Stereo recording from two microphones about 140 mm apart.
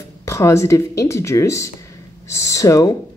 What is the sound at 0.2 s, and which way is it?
A woman's voice, 20° left (ahead or behind).